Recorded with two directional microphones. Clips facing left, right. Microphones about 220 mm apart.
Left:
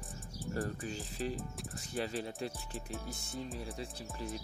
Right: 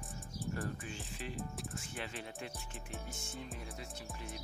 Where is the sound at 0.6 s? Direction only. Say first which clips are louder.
Left 4 dB; 35° left (ahead or behind).